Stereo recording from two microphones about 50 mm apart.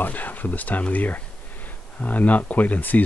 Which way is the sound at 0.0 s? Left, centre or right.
Left.